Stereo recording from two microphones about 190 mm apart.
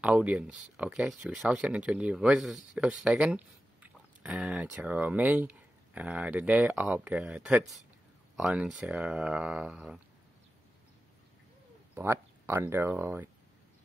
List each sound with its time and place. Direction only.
0.0 s speech: 5° right (ahead or behind)
11.9 s speech: 10° right (ahead or behind)